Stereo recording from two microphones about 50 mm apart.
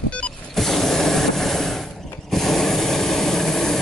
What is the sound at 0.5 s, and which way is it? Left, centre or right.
Mechanisms, centre.